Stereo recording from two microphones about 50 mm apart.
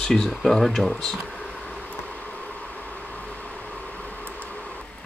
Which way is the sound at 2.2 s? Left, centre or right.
Left.